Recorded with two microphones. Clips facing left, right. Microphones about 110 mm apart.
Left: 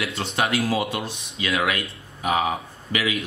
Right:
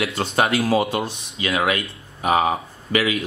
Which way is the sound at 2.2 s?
40° right (ahead or behind).